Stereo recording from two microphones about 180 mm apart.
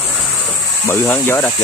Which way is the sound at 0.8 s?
10° left (ahead or behind).